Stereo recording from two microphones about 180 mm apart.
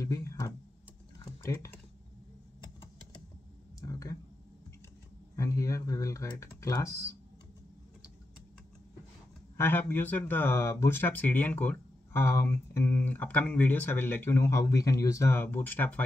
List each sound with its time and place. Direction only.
0.0 s speech: 15° left (ahead or behind)
1.2 s typing: 15° left (ahead or behind)
3.8 s a sound: 20° left (ahead or behind)
5.3 s speech: 15° left (ahead or behind)
9.6 s speech: 10° left (ahead or behind)